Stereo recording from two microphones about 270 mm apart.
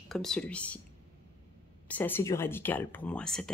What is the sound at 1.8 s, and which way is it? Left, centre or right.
Speech, centre.